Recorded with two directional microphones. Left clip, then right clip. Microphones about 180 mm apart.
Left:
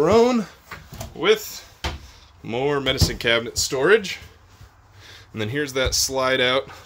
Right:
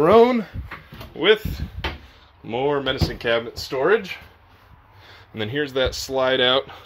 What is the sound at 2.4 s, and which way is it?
Speech, 20° left (ahead or behind).